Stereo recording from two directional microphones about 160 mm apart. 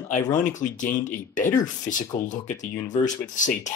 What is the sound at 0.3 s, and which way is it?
Speech, 50° left (ahead or behind).